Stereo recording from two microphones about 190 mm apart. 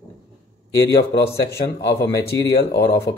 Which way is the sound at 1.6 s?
55° left (ahead or behind).